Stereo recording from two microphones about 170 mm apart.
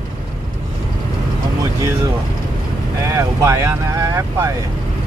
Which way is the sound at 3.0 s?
20° right (ahead or behind).